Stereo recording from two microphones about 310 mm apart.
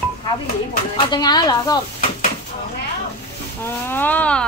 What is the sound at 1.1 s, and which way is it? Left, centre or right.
Speech, centre.